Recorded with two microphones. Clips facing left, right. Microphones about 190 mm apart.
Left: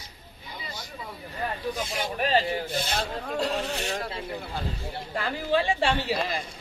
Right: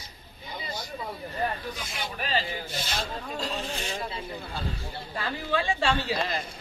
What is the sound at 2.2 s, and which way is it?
Speech, 55° left (ahead or behind).